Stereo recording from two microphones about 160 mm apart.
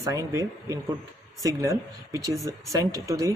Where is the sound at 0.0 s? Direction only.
20° right (ahead or behind).